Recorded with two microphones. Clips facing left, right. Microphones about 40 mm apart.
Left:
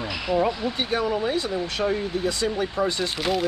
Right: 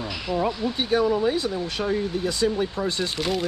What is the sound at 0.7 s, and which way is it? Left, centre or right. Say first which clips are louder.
Speech: right 3 dB; centre.